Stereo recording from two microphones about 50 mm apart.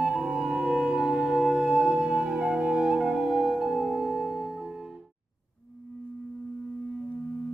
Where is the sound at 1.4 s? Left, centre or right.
Centre.